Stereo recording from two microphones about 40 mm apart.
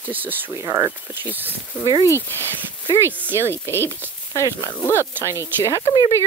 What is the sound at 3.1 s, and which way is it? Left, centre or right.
Speech, right.